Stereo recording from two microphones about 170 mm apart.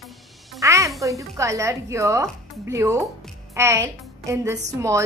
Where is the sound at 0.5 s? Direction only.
20° right (ahead or behind).